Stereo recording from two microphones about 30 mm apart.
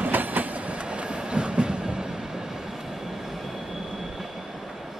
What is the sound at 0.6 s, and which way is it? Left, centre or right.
Train, right.